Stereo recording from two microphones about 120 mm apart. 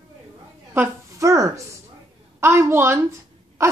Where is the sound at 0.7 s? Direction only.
20° right (ahead or behind).